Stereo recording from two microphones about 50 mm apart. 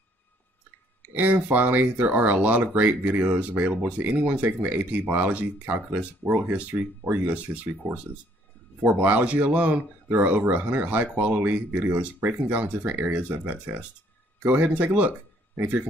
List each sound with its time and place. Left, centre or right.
1.1 s speech: right
6.7 s speech: right